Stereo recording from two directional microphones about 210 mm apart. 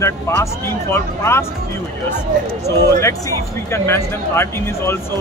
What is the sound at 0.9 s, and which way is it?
Speech, 10° left (ahead or behind).